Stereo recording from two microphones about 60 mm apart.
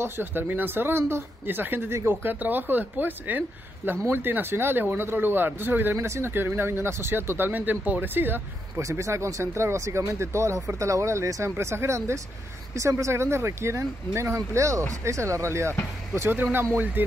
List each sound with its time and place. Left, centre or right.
0.0 s speech: right
5.9 s speech: right
8.7 s speech: right
11.5 s speech: right
16.2 s speech: right